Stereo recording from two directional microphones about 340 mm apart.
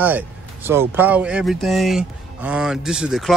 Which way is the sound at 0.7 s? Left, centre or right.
Centre.